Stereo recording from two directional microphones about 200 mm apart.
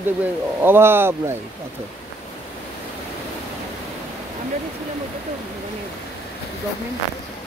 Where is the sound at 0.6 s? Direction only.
10° right (ahead or behind).